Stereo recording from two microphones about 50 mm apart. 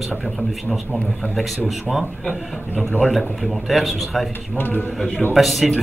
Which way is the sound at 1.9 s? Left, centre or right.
Centre.